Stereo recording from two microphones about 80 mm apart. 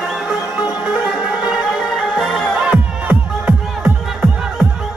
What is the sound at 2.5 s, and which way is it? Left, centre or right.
Music, centre.